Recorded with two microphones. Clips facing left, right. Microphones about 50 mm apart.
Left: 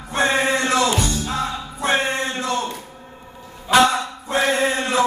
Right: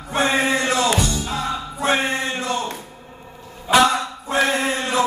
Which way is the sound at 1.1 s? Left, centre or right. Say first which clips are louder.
Even; right.